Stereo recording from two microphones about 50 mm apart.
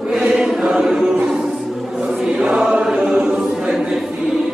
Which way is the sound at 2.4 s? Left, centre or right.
Centre.